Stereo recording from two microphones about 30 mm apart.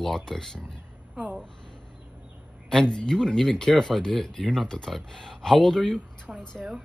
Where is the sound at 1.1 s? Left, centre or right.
Right.